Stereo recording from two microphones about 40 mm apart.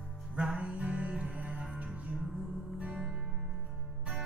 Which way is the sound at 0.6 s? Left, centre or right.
Right.